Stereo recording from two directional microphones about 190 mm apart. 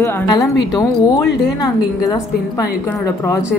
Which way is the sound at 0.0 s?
20° left (ahead or behind).